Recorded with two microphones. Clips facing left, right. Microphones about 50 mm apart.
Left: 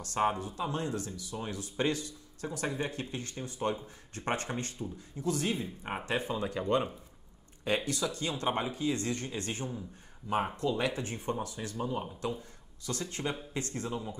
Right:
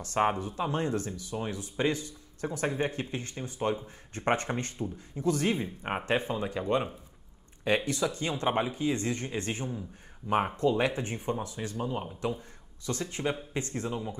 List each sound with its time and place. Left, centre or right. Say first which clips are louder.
0.0 s speech: right 3 dB; right
6.3 s speech: right 1 dB; centre
7.6 s speech: right 4 dB; right
12.8 s speech: right 4 dB; right